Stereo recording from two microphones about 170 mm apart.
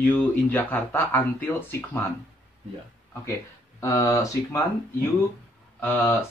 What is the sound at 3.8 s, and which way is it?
Speech, 15° left (ahead or behind).